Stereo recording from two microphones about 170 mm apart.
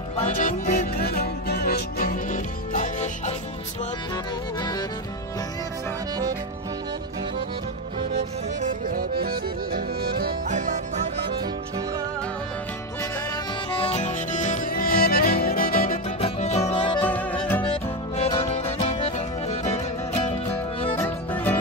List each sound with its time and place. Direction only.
0.4 s music: 50° left (ahead or behind)
8.5 s music: 50° right (ahead or behind)
10.5 s music: 45° right (ahead or behind)
13.7 s music: 40° left (ahead or behind); by 16.0 s 60° left (ahead or behind)
16.2 s music: 40° left (ahead or behind)
17.0 s music: 10° left (ahead or behind)
18.4 s music: 40° left (ahead or behind)
21.0 s music: 10° left (ahead or behind)